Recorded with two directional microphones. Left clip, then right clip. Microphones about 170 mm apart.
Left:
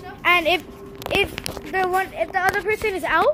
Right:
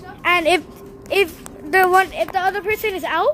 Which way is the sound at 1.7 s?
60° right (ahead or behind).